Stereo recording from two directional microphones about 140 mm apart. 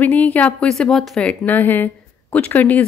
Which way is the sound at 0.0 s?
10° left (ahead or behind).